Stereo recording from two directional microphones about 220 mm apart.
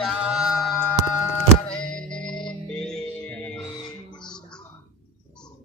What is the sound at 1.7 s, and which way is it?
Music, 5° left (ahead or behind).